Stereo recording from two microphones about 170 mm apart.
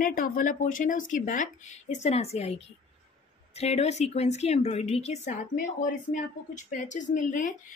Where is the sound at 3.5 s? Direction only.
40° left (ahead or behind).